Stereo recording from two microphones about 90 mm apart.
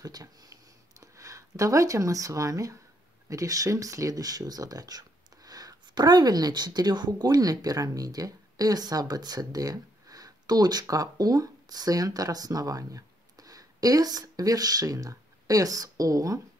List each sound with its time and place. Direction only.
0.0 s speech: 45° right (ahead or behind)